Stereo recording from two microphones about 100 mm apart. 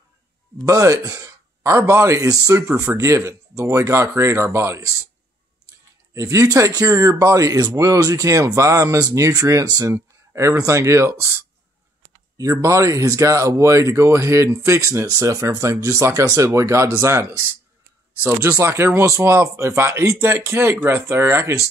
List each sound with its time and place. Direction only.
0.7 s speech: 35° right (ahead or behind)
6.1 s speech: 35° right (ahead or behind)